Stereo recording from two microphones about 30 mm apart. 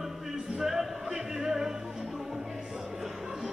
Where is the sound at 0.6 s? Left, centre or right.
Centre.